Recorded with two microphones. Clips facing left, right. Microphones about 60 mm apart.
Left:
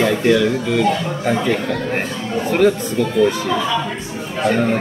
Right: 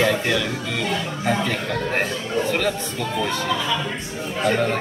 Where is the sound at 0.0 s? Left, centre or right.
Centre.